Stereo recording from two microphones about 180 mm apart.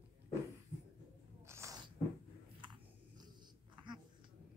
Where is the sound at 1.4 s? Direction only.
15° right (ahead or behind).